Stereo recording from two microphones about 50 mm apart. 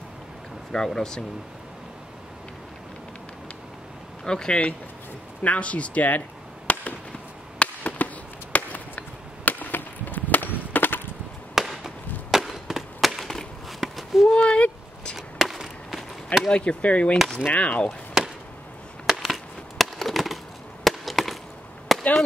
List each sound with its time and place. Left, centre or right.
0.7 s speech: centre
4.2 s speech: centre
5.4 s speech: left
6.7 s fireworks: left
7.5 s chop: left
11.5 s wood: centre
13.7 s a sound: centre
14.3 s a sound: left
15.1 s chop: centre
16.4 s speech: left
18.2 s chop: centre
19.0 s a sound: centre
20.8 s chop: centre